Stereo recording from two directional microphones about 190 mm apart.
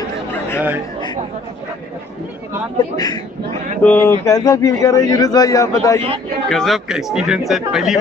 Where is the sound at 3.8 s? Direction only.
10° left (ahead or behind).